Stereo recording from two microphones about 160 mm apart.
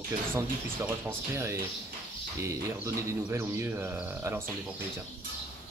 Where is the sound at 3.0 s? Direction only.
15° right (ahead or behind).